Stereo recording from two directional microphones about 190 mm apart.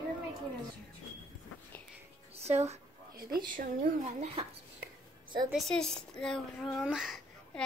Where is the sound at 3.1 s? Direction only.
50° right (ahead or behind).